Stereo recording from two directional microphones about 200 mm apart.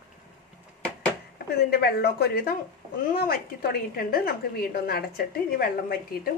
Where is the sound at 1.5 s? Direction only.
50° left (ahead or behind).